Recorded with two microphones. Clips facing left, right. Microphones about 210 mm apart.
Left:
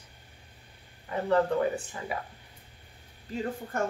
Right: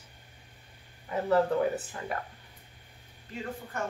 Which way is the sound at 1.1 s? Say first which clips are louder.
Even; 5° right (ahead or behind).